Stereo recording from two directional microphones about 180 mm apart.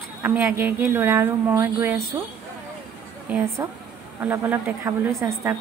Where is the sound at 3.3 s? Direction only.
15° right (ahead or behind).